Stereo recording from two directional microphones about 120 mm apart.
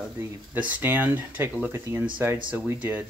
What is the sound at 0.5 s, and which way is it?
Speech, 15° right (ahead or behind).